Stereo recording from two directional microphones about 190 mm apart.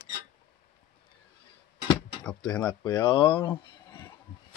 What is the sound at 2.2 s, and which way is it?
Speech, 5° left (ahead or behind).